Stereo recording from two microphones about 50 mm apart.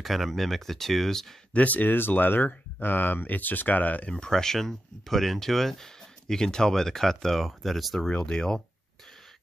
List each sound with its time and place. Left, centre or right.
0.0 s speech: centre
1.5 s speech: left
4.1 s speech: centre
8.1 s speech: centre